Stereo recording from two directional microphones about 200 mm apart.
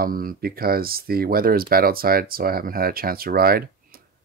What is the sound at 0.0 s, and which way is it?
Speech, 45° right (ahead or behind).